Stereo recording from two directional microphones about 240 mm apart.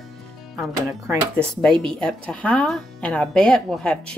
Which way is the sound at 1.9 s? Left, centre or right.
Centre.